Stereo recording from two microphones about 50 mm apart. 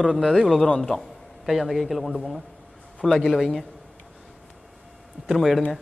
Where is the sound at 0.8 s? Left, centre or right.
Centre.